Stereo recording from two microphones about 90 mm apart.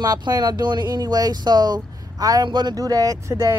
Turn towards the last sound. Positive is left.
turn(degrees=-35)  # may be behind; listen again after turning